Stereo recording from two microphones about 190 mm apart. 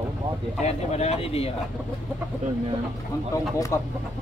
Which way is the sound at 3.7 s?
15° left (ahead or behind).